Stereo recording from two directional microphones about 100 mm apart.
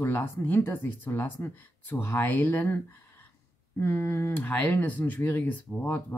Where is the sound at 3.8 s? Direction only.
25° left (ahead or behind).